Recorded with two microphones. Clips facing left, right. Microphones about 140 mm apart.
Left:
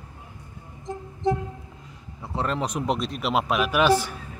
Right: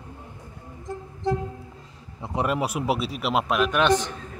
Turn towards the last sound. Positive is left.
turn(degrees=10)  # may be behind; listen again after turning